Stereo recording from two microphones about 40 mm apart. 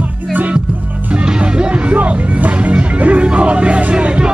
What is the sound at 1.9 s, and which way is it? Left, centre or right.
Music, right.